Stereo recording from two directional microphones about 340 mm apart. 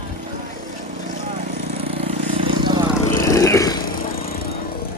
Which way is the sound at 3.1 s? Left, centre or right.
Centre.